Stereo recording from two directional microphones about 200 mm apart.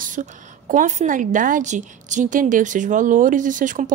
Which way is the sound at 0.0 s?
40° right (ahead or behind).